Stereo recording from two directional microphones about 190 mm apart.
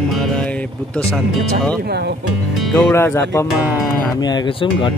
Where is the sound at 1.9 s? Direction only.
60° right (ahead or behind).